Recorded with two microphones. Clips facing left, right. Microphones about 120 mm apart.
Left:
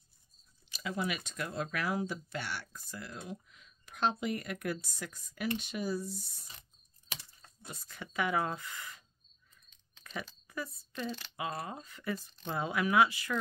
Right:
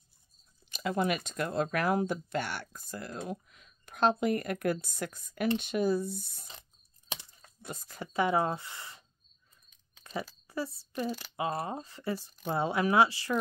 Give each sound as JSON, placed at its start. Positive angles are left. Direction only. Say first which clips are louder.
{"t": 0.7, "sound": "speech", "louder": "right 6 dB", "side_deg": -50}
{"t": 7.6, "sound": "speech", "louder": "right 5 dB", "side_deg": -40}
{"t": 10.1, "sound": "a sound", "louder": "right 5 dB", "side_deg": -30}
{"t": 10.4, "sound": "a woman's voice", "louder": "right 5 dB", "side_deg": -30}